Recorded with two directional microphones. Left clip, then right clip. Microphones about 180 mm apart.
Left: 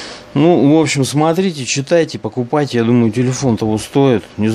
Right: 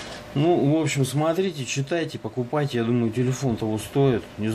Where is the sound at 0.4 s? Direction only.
50° left (ahead or behind).